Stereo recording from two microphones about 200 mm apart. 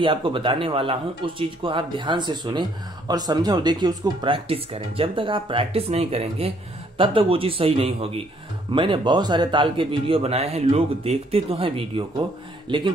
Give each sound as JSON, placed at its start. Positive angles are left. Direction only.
{"t": 0.0, "sound": "speech", "side_deg": -25}